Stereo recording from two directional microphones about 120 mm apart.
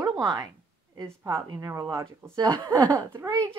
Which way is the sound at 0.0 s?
35° right (ahead or behind).